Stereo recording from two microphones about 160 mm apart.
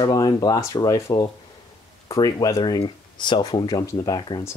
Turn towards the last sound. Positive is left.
turn(degrees=25)  # may be behind; listen again after turning